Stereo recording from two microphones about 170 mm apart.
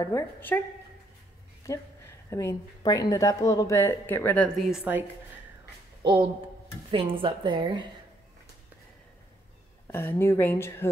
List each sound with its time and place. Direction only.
0.0 s a woman's voice: 15° left (ahead or behind)
1.7 s a woman's voice: 15° left (ahead or behind)
4.6 s a woman's voice: 5° right (ahead or behind)
6.9 s a woman's voice: 30° right (ahead or behind)
9.8 s a woman's voice: 15° left (ahead or behind)